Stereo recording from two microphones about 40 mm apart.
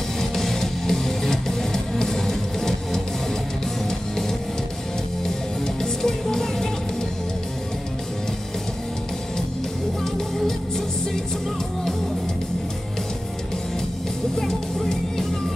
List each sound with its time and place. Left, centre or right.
0.2 s music: centre
5.8 s music: centre
14.4 s music: centre